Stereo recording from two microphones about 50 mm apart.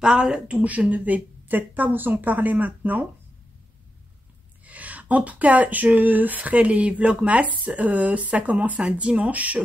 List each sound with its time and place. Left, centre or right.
0.0 s speech: centre; by 3.1 s right
4.6 s speech: right